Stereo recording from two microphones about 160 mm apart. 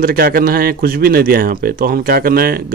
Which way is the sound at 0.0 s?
65° right (ahead or behind).